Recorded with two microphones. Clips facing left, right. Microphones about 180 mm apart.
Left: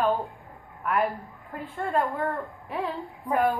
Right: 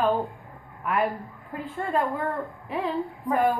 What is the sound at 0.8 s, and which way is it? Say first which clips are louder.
A woman's voice: even; centre (ahead or behind).